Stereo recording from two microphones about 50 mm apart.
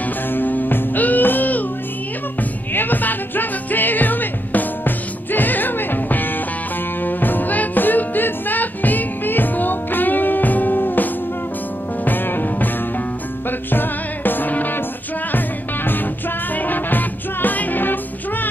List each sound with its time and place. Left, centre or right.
0.3 s music: left
2.7 s music: left